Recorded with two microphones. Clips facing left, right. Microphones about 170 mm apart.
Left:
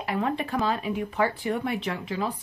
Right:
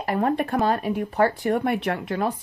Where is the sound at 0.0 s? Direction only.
45° right (ahead or behind).